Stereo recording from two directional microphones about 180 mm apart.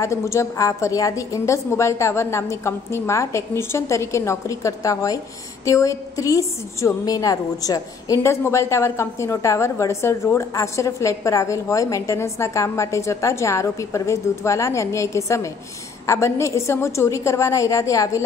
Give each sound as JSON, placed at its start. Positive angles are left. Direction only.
{"t": 0.0, "sound": "a woman's voice", "side_deg": 15}